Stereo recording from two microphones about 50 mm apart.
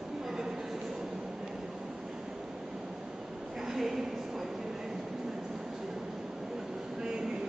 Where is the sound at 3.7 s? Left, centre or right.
Centre.